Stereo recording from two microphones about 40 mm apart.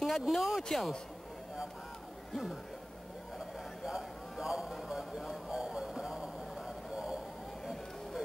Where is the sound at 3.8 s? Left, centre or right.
Centre.